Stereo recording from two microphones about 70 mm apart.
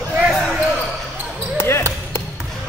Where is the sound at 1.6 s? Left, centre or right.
Left.